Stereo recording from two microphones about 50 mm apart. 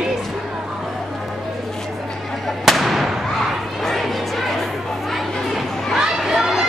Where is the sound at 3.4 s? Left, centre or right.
Centre.